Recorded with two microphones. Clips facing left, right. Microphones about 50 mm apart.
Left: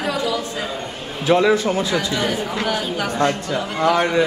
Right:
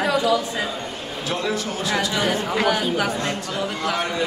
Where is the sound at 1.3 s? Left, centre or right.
Left.